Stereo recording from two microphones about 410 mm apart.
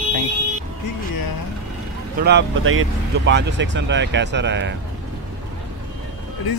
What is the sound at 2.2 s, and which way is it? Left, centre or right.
Speech, right.